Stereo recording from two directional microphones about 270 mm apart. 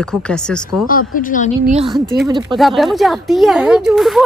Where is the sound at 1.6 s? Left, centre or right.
Right.